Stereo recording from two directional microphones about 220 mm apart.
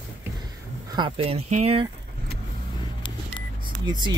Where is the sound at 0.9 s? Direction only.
25° right (ahead or behind).